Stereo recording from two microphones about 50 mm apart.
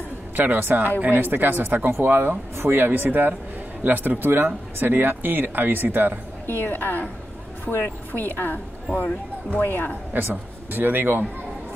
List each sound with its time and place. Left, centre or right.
0.4 s speech: right
6.4 s a woman's voice: left
8.2 s a woman's voice: left
8.9 s speech: left
9.6 s a woman's voice: left
10.1 s speech: right